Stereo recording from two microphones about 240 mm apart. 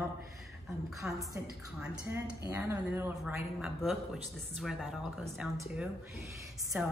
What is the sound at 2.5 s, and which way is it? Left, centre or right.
A woman's voice, centre.